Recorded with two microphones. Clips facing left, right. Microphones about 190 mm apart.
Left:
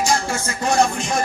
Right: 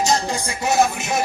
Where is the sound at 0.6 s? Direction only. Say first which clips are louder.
Even; 5° right (ahead or behind).